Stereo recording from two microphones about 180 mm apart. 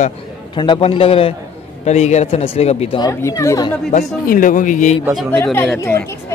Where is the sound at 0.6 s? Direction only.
30° left (ahead or behind).